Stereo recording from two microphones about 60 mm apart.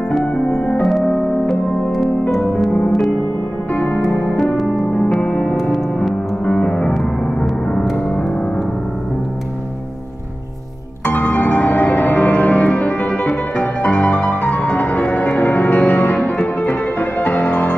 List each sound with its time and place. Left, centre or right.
0.1 s music: centre
1.5 s music: centre
3.7 s music: left
5.2 s music: left
11.1 s music: left
14.6 s music: left
16.2 s music: centre
16.6 s music: left